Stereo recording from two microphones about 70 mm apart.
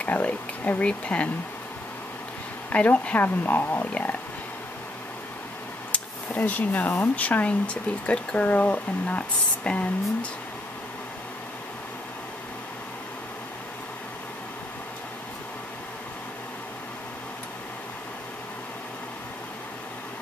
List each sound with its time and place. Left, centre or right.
0.0 s speech: left
2.7 s speech: centre
5.9 s speech: left